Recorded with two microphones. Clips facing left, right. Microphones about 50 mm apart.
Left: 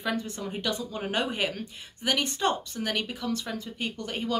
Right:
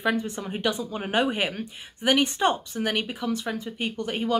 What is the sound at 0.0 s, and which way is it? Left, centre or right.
Speech, centre.